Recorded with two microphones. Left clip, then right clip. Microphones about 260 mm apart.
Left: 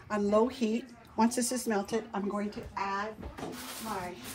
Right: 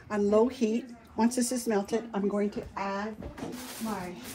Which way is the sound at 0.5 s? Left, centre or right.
Centre.